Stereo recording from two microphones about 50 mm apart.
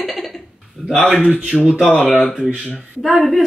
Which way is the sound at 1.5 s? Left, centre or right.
Centre.